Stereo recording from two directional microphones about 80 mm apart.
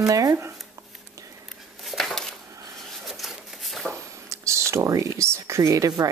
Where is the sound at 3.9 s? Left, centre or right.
Right.